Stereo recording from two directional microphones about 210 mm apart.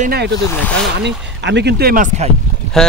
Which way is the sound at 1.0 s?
55° right (ahead or behind).